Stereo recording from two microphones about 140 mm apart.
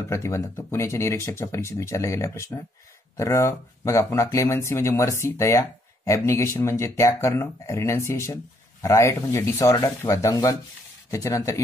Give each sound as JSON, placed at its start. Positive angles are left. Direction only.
{"t": 0.1, "sound": "speech", "side_deg": 20}